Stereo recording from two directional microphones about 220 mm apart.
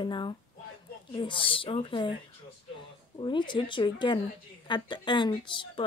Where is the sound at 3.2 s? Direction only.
20° left (ahead or behind).